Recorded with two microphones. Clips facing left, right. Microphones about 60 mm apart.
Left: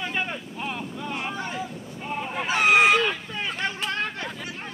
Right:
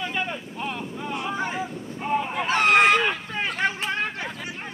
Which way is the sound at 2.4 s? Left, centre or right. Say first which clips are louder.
Even; centre.